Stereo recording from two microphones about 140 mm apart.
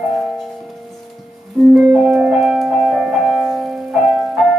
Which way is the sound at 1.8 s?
5° right (ahead or behind).